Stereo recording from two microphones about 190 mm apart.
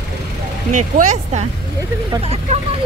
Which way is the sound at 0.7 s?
40° right (ahead or behind).